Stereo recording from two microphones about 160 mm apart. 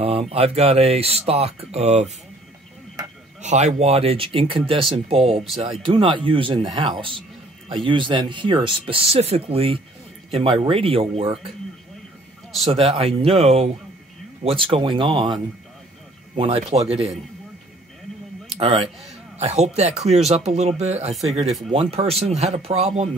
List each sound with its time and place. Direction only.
0.0 s speech: 40° right (ahead or behind)
3.4 s speech: 45° right (ahead or behind)
12.7 s speech: 40° right (ahead or behind)
16.3 s speech: 35° right (ahead or behind)
18.6 s speech: 35° right (ahead or behind)